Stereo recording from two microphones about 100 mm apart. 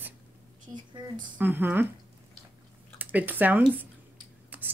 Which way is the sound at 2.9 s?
20° right (ahead or behind).